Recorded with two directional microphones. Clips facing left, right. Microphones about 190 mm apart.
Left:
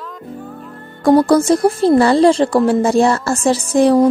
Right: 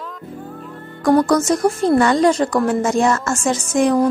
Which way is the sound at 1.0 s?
30° left (ahead or behind).